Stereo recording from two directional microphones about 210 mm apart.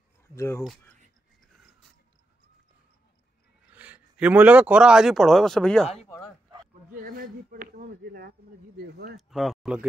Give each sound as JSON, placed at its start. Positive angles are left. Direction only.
{"t": 0.4, "sound": "speech", "side_deg": 15}
{"t": 3.7, "sound": "speech", "side_deg": -5}
{"t": 7.1, "sound": "speech", "side_deg": -45}
{"t": 9.1, "sound": "speech", "side_deg": 0}